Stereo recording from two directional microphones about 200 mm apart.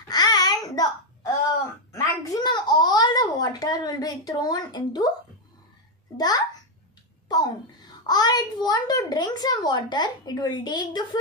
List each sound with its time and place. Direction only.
0.1 s babbling: 20° left (ahead or behind)
2.2 s a sound: 20° left (ahead or behind)
6.1 s babbling: 20° left (ahead or behind)
7.2 s a child's voice: 20° left (ahead or behind)